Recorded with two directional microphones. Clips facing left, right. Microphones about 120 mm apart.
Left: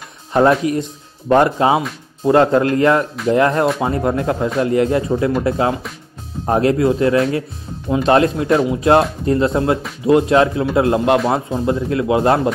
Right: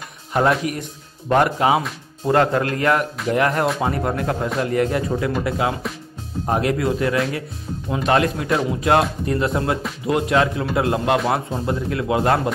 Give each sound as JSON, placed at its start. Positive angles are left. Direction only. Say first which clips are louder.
{"t": 0.3, "sound": "a man's voice", "louder": "left 5 dB", "side_deg": 25}